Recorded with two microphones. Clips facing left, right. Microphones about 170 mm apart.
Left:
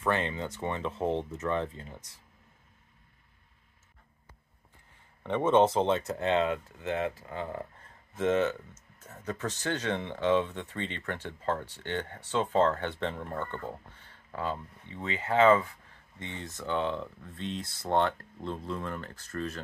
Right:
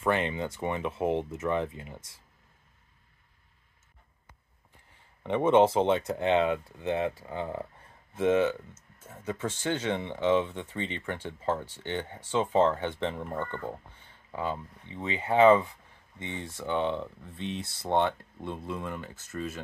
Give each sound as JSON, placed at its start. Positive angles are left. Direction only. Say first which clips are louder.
{"t": 0.0, "sound": "speech", "louder": "right 2 dB", "side_deg": -15}
{"t": 5.2, "sound": "speech", "louder": "right 2 dB", "side_deg": -15}